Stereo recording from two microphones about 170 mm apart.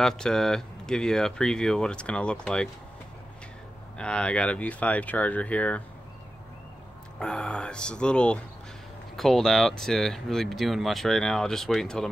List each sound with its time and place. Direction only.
0.0 s speech: 5° left (ahead or behind)
4.0 s speech: 5° left (ahead or behind)
7.2 s speech: 5° left (ahead or behind)